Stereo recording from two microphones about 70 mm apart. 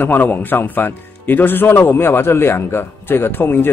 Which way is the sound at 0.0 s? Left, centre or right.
Left.